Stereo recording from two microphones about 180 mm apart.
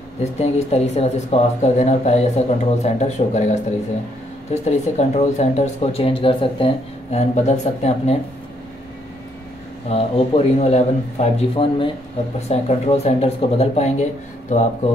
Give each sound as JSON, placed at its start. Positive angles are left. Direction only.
{"t": 0.2, "sound": "speech", "side_deg": 40}
{"t": 4.6, "sound": "speech", "side_deg": 40}
{"t": 9.8, "sound": "speech", "side_deg": 30}